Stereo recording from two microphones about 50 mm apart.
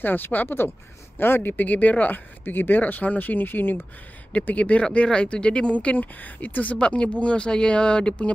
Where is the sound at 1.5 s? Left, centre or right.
Left.